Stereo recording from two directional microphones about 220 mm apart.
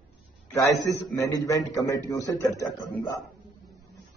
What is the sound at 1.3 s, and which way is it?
A man's voice, 15° left (ahead or behind).